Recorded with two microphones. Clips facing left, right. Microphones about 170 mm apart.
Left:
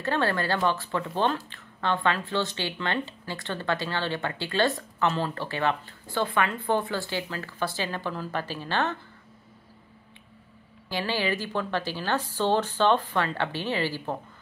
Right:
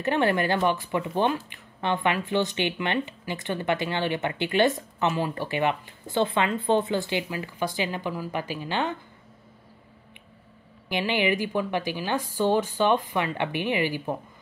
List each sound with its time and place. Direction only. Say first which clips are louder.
0.0 s speech: right 3 dB; 20° right (ahead or behind)
10.9 s speech: right 3 dB; 20° right (ahead or behind)